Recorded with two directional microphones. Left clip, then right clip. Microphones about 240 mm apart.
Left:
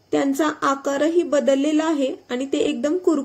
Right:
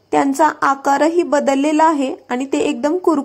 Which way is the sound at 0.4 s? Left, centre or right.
Right.